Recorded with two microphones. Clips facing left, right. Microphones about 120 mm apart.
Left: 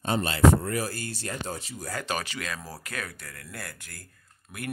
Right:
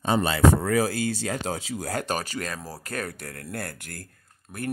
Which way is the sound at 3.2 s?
55° right (ahead or behind).